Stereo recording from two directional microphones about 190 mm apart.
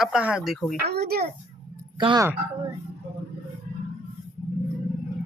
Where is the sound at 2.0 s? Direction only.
25° right (ahead or behind).